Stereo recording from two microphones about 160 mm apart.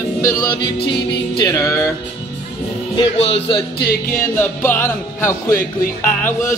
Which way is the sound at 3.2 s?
35° left (ahead or behind).